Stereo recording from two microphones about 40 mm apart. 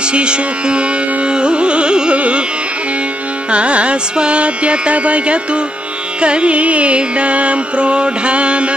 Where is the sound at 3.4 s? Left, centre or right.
Right.